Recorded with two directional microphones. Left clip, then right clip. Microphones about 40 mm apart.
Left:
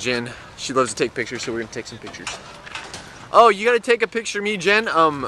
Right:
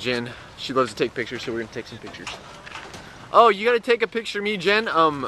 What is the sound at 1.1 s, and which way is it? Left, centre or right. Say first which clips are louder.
Speech: left 3 dB; left.